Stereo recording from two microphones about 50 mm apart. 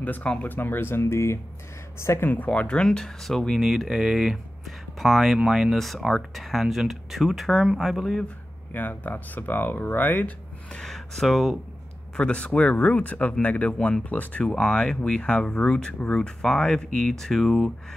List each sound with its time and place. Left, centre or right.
0.4 s speech: left
2.0 s speech: left
2.2 s speech: left
2.8 s speech: centre
3.5 s speech: centre
5.8 s speech: centre
8.7 s speech: left
10.9 s speech: centre
12.2 s speech: left
14.4 s speech: centre